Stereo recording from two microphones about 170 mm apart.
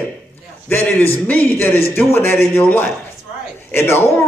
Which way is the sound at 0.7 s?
10° left (ahead or behind).